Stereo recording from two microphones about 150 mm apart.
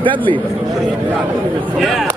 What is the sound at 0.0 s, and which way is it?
Speech, 35° right (ahead or behind).